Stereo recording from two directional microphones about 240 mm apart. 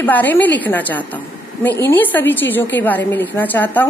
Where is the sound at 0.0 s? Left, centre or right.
Centre.